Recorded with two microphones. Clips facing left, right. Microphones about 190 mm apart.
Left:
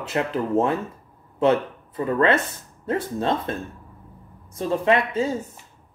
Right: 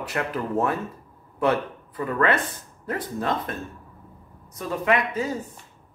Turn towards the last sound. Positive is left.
turn(degrees=25)  # may be behind; listen again after turning